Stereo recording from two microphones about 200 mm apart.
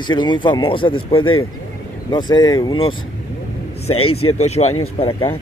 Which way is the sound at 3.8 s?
90° left.